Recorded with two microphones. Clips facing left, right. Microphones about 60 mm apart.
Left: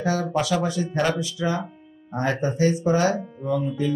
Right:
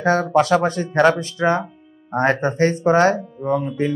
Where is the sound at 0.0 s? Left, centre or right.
Right.